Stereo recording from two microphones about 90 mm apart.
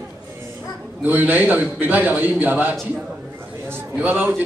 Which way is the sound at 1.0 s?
20° right (ahead or behind).